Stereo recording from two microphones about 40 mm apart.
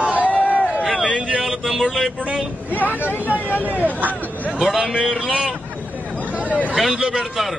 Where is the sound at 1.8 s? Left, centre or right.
Centre.